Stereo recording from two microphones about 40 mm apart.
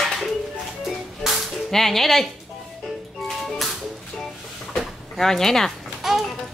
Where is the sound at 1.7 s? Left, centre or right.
Centre.